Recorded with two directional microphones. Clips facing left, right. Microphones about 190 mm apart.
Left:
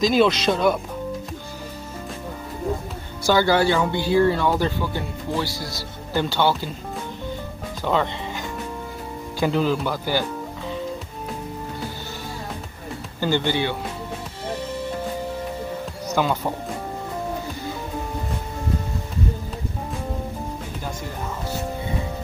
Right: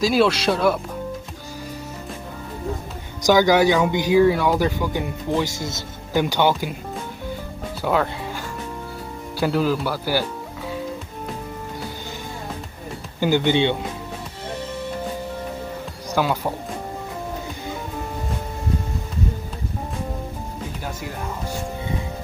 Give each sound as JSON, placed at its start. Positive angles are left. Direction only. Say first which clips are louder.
{"t": 0.0, "sound": "speech", "louder": "even", "side_deg": -5}
{"t": 3.3, "sound": "speech", "louder": "right 3 dB", "side_deg": -15}
{"t": 7.8, "sound": "speech", "louder": "right 1 dB", "side_deg": -5}
{"t": 9.4, "sound": "speech", "louder": "even", "side_deg": -5}
{"t": 13.2, "sound": "speech", "louder": "right 4 dB", "side_deg": -15}
{"t": 16.1, "sound": "speech", "louder": "right 1 dB", "side_deg": -10}